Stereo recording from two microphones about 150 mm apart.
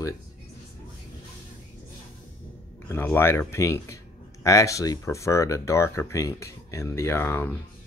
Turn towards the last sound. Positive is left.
turn(degrees=15)  # may be behind; listen again after turning